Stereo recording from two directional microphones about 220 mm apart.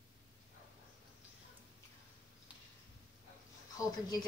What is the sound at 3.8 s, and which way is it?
Speech, 15° left (ahead or behind).